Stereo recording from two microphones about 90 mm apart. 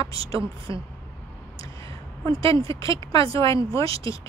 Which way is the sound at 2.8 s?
40° left (ahead or behind).